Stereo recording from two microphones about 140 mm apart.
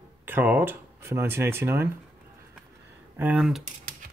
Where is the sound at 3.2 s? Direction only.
10° right (ahead or behind).